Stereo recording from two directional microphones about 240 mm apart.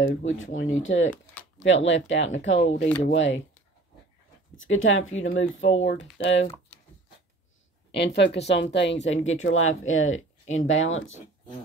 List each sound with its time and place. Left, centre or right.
0.0 s speech: left
4.6 s speech: left
7.9 s speech: left
10.4 s speech: left
10.7 s speech: left